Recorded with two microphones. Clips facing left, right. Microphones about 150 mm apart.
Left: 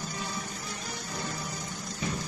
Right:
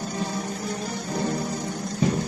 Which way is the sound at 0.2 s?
50° right (ahead or behind).